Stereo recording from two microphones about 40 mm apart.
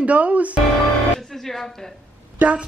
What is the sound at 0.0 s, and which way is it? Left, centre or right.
Speech, right.